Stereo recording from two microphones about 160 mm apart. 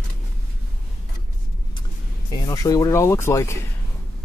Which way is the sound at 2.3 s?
25° left (ahead or behind).